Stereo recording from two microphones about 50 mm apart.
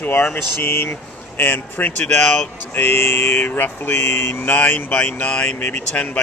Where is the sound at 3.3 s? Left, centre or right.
Left.